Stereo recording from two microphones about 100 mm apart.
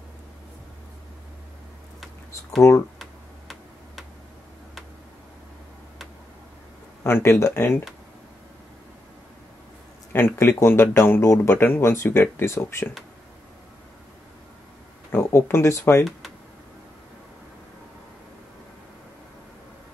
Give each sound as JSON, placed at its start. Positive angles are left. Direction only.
{"t": 2.6, "sound": "speech", "side_deg": 30}
{"t": 3.0, "sound": "tick-tock", "side_deg": 0}
{"t": 7.0, "sound": "speech", "side_deg": 25}
{"t": 10.1, "sound": "speech", "side_deg": 25}
{"t": 15.0, "sound": "speech", "side_deg": 25}